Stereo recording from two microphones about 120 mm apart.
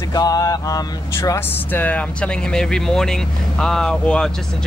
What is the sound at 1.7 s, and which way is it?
Speech, 15° left (ahead or behind).